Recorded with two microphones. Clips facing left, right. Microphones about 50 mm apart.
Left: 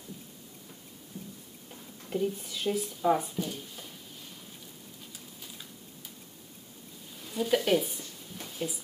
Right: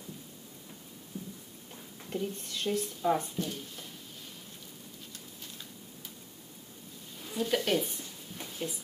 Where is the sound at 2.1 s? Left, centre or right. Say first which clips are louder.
Left 5 dB; centre.